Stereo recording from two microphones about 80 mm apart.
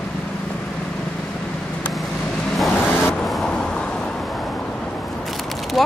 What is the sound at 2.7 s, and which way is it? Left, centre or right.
Vehicle, left.